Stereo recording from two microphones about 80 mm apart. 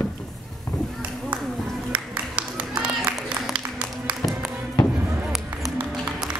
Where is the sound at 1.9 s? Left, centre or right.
Centre.